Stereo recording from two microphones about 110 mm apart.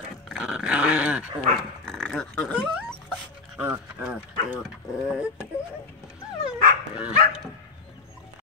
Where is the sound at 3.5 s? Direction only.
15° right (ahead or behind).